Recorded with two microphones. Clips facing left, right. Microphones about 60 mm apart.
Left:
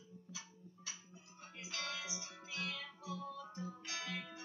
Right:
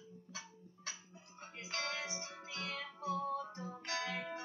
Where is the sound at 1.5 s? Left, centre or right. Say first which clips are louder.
Right 4 dB; right.